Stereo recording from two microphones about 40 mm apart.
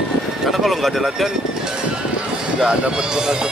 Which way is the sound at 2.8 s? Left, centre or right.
Centre.